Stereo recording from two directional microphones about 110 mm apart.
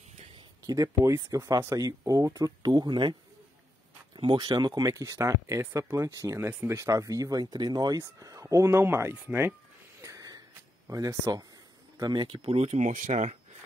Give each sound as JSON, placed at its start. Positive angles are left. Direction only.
{"t": 0.7, "sound": "speech", "side_deg": -30}
{"t": 10.0, "sound": "a sound", "side_deg": -30}
{"t": 10.9, "sound": "speech", "side_deg": -30}